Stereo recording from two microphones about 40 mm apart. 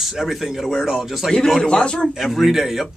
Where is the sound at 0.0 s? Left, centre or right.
Centre.